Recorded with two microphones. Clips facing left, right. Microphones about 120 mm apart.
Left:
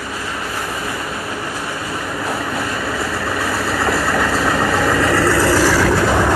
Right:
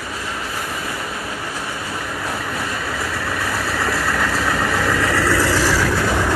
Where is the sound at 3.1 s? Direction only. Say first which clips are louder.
Left 3 dB; 10° left (ahead or behind).